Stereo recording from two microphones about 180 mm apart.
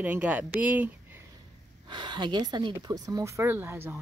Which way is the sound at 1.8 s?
25° right (ahead or behind).